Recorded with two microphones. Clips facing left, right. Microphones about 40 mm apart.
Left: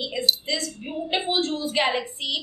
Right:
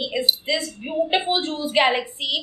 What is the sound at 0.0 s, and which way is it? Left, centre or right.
Speech, centre.